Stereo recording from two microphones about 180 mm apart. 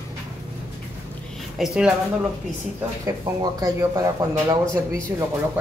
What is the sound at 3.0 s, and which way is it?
Speech, 20° right (ahead or behind).